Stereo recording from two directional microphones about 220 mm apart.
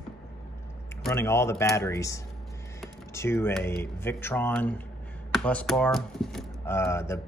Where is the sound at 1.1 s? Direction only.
10° left (ahead or behind).